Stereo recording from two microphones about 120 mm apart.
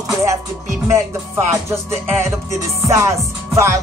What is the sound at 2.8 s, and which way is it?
Music, 25° right (ahead or behind).